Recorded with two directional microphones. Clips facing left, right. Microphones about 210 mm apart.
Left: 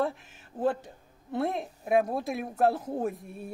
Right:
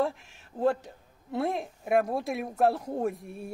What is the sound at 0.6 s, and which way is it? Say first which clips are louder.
Speech: right 2 dB; centre (ahead or behind).